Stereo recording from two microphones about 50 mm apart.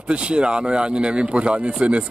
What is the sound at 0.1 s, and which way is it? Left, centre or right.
A man's voice, right.